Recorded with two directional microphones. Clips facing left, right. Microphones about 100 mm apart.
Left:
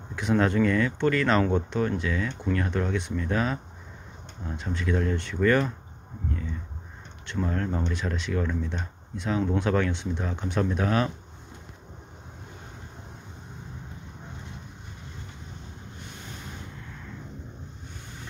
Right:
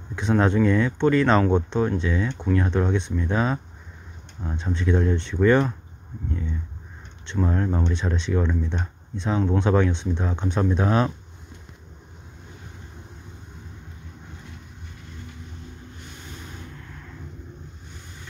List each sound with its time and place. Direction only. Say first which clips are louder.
0.1 s speech: right 3 dB; 20° right (ahead or behind)
7.3 s speech: right 4 dB; 15° right (ahead or behind)